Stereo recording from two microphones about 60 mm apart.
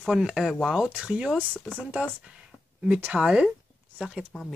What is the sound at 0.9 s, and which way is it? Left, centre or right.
Speech, centre.